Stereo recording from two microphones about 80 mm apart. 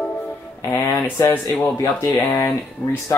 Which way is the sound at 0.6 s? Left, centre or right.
Left.